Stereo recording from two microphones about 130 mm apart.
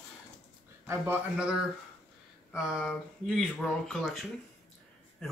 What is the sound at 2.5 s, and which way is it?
Speech, 5° right (ahead or behind).